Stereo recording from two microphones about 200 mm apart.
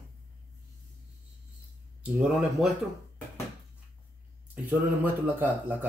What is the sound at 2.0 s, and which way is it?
Speech, 5° right (ahead or behind).